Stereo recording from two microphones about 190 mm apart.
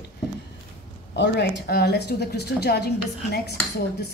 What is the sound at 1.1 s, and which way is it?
A woman's voice, 65° left (ahead or behind).